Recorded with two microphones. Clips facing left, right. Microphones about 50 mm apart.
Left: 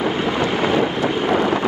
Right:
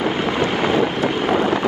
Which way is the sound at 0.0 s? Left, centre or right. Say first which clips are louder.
Even; right.